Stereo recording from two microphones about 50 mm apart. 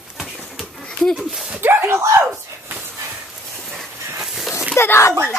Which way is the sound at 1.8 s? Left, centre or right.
Right.